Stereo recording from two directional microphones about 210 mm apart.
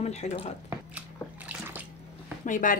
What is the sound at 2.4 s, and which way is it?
Speech, 40° left (ahead or behind).